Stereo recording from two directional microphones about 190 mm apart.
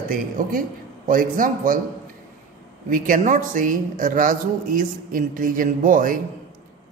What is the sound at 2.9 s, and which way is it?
A woman's voice, 45° right (ahead or behind).